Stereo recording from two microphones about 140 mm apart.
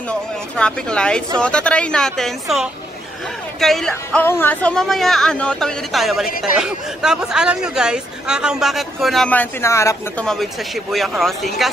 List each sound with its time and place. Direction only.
0.1 s speech: 5° left (ahead or behind)
9.3 s speech: 15° left (ahead or behind)
10.1 s speech: 5° left (ahead or behind)